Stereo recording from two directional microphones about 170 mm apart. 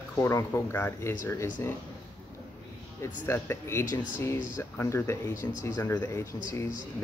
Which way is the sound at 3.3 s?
15° left (ahead or behind).